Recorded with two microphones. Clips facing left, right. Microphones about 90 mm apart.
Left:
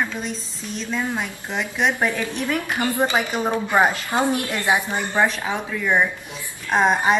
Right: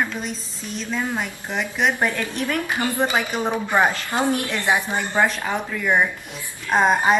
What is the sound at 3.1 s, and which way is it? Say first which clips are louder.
A woman's voice: left 1 dB; 15° left (ahead or behind).